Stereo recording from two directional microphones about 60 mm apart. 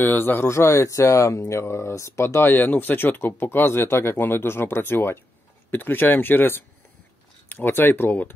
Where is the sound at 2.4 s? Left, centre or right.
Left.